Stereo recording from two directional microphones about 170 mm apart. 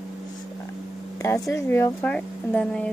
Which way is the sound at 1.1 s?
20° left (ahead or behind).